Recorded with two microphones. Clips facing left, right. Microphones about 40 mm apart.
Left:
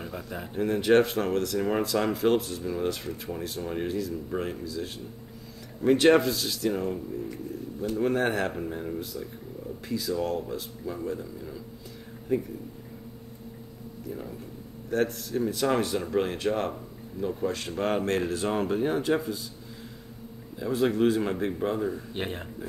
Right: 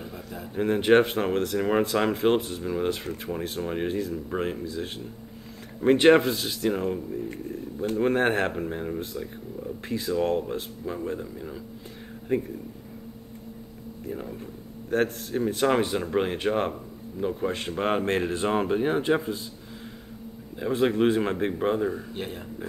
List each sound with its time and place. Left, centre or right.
0.1 s a man's voice: left
0.6 s speech: right
12.3 s speech: right
14.9 s speech: right
20.5 s speech: right
22.1 s speech: left